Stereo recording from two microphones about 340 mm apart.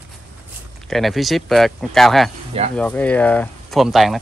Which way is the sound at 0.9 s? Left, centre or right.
Centre.